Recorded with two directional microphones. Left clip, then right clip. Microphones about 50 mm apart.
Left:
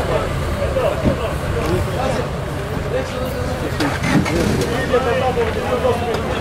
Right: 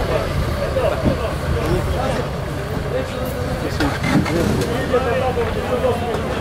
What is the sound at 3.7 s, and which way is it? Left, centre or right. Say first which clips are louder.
Vehicle: left 1 dB; left.